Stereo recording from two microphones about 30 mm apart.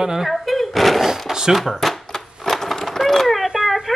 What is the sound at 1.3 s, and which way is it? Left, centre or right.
Speech, centre.